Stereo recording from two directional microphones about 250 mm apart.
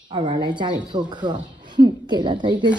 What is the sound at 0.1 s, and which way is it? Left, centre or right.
Speech, right.